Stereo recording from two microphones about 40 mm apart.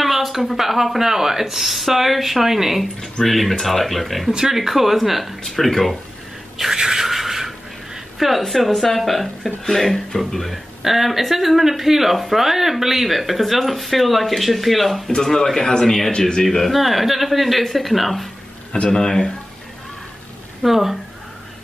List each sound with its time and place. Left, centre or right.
0.0 s speech: centre
3.3 s speech: centre
4.3 s speech: centre
4.6 s speech: centre
5.4 s speech: centre
6.8 s a sound: centre
8.4 s speech: centre
10.8 s speech: centre
15.3 s a man's voice: centre
16.4 s speech: centre
18.9 s a man's voice: centre
20.6 s speech: centre